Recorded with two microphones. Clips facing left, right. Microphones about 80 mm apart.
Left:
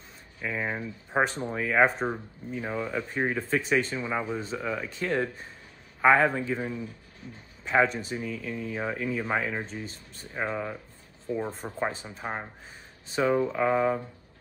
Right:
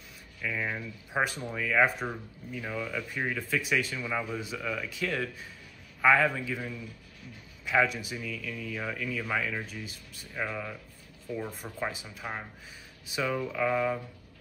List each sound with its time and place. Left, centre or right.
0.4 s speech: left